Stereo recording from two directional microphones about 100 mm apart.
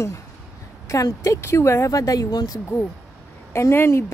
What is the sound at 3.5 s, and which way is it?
Speech, 25° left (ahead or behind).